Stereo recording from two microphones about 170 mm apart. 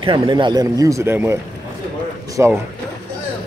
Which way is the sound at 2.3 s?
15° right (ahead or behind).